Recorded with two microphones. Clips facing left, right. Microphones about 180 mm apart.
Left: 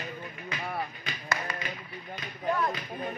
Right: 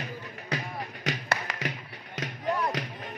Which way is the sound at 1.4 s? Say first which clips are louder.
Right 2 dB; 75° right (ahead or behind).